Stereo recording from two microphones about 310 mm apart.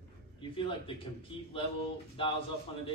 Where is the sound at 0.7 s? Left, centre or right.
Centre.